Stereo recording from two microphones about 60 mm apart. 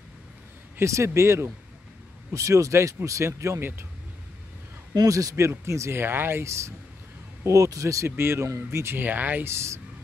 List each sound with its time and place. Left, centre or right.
0.8 s speech: right
2.3 s speech: right
4.9 s a man's voice: right
5.3 s speech: right
5.9 s speech: right
6.4 s speech: right
7.4 s speech: right
8.2 s speech: right
9.0 s speech: right
9.4 s speech: right